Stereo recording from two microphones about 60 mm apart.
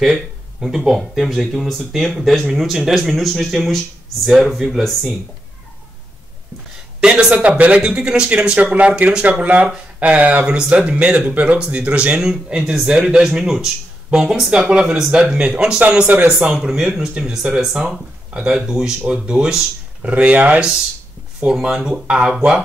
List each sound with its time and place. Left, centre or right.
0.0 s speech: centre
7.0 s speech: centre
15.3 s speech: centre
16.5 s speech: centre
18.3 s speech: centre